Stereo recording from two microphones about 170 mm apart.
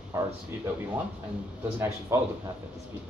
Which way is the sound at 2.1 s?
15° right (ahead or behind).